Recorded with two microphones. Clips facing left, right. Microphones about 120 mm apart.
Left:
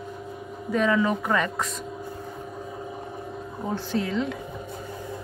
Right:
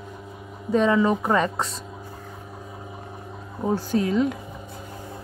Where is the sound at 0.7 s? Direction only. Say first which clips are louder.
Right 3 dB; 30° right (ahead or behind).